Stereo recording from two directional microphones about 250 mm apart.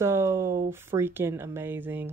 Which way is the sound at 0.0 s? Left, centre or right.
Centre.